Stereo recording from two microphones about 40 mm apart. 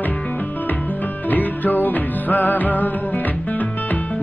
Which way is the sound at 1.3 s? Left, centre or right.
Left.